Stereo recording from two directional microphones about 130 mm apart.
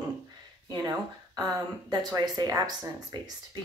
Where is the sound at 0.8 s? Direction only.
30° right (ahead or behind).